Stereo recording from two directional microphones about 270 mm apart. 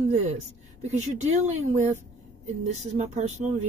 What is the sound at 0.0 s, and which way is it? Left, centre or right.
A woman's voice, right.